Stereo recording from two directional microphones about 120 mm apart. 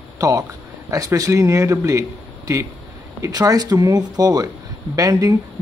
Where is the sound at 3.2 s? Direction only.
30° right (ahead or behind).